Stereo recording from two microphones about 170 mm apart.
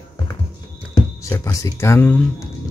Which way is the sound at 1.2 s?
20° left (ahead or behind).